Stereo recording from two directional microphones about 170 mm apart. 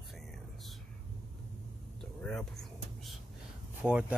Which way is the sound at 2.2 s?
5° left (ahead or behind).